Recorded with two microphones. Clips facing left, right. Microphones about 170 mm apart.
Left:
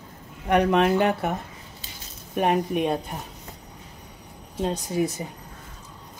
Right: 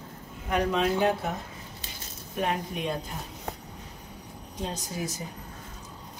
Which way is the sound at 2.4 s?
60° left (ahead or behind).